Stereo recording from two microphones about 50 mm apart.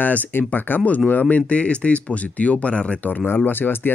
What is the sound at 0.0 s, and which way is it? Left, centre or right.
Speech, left.